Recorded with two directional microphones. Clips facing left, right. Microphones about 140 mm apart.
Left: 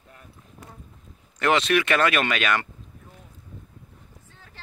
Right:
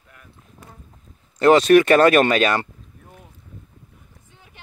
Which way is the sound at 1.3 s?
35° right (ahead or behind).